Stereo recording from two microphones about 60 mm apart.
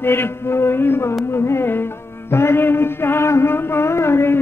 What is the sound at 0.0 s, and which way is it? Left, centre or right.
Music, left.